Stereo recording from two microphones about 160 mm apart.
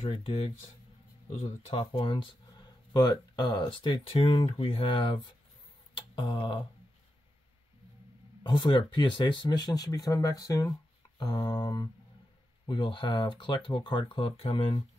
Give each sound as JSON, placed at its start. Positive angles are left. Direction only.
{"t": 0.0, "sound": "speech", "side_deg": 40}
{"t": 1.7, "sound": "speech", "side_deg": 35}
{"t": 5.9, "sound": "a sound", "side_deg": 30}
{"t": 8.5, "sound": "speech", "side_deg": 30}